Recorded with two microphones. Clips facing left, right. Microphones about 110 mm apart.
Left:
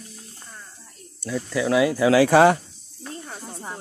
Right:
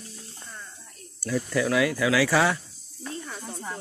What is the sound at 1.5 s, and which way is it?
Speech, 20° left (ahead or behind).